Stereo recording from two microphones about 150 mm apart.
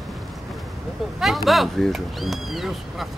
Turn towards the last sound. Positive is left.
turn(degrees=0)  # may be behind; listen again after turning